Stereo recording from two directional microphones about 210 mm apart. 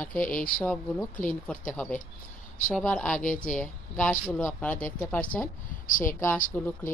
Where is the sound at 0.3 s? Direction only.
40° left (ahead or behind).